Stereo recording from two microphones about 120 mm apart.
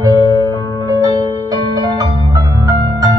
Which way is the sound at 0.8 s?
30° right (ahead or behind).